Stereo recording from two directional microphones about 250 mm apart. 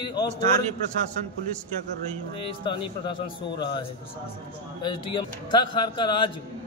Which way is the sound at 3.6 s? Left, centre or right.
Centre.